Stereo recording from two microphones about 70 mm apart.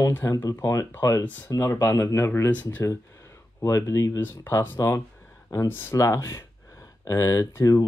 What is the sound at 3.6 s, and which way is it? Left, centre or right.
Speech, left.